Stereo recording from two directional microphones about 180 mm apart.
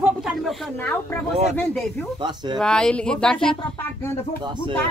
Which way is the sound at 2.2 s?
25° right (ahead or behind).